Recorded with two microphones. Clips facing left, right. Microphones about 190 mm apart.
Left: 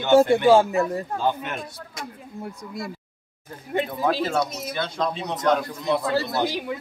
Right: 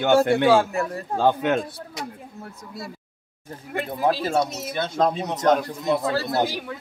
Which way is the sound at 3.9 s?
25° right (ahead or behind).